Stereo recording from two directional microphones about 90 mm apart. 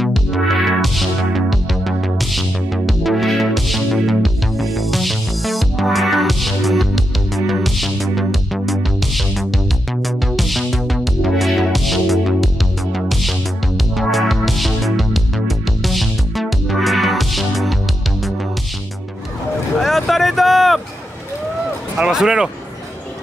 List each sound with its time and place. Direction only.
0.0 s music: centre (ahead or behind)
19.8 s vehicle: centre (ahead or behind)
21.9 s music: 5° right (ahead or behind)